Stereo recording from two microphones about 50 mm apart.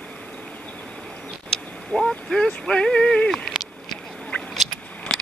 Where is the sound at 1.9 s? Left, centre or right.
Centre.